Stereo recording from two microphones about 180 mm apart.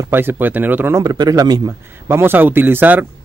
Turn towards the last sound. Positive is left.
turn(degrees=-10)  # may be behind; listen again after turning